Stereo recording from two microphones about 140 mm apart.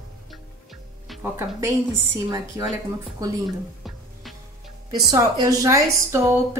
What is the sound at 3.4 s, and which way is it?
Music, centre (ahead or behind).